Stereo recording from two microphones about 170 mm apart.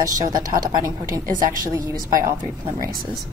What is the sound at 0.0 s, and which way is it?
A woman's voice, 20° right (ahead or behind).